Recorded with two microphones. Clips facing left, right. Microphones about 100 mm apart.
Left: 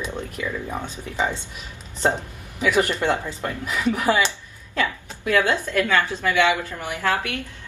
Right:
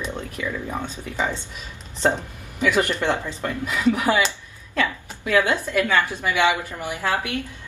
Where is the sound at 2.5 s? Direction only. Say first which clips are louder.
Even; 15° left (ahead or behind).